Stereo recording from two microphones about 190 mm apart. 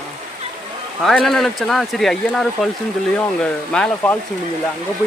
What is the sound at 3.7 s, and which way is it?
Speech, 10° left (ahead or behind).